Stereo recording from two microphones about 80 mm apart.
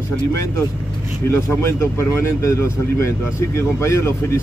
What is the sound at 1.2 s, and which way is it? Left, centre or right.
Speech, left.